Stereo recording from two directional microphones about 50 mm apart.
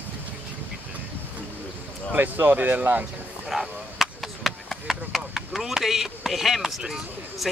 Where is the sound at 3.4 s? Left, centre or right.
Centre.